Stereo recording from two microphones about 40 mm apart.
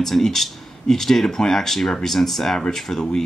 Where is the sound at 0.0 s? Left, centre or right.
Centre.